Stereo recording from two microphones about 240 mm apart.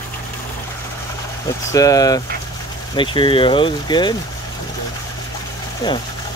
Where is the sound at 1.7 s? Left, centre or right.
Centre.